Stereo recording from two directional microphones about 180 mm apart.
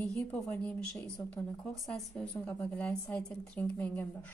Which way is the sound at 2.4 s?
10° left (ahead or behind).